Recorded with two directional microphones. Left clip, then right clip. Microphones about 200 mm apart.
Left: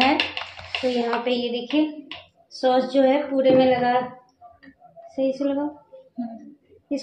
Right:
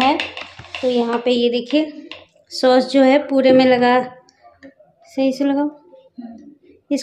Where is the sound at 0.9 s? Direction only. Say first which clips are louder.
Right 7 dB; 30° right (ahead or behind).